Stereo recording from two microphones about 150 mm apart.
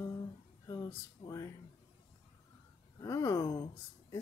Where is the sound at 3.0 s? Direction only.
20° left (ahead or behind).